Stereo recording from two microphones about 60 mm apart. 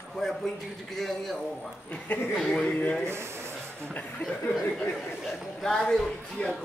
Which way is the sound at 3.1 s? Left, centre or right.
Right.